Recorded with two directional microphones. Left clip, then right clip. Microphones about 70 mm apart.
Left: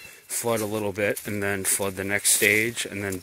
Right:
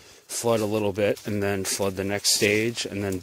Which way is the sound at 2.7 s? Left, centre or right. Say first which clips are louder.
Right 1 dB; right.